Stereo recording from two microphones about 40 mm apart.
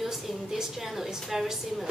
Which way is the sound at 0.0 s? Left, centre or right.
Centre.